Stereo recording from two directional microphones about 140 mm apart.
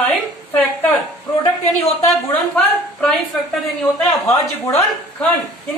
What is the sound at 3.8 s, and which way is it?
Speech, 15° left (ahead or behind).